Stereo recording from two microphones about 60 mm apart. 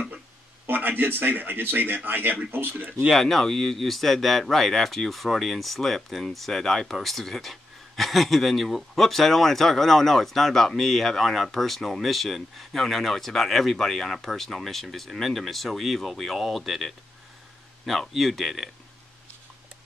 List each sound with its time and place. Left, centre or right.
0.7 s a man's voice: right
3.1 s speech: centre